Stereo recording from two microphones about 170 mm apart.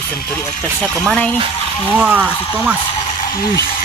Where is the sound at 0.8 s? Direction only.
5° left (ahead or behind).